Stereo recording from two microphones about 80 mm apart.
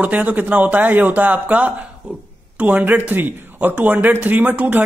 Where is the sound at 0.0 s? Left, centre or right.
Right.